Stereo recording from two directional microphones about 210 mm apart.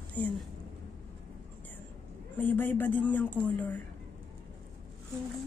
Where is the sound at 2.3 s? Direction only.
10° left (ahead or behind).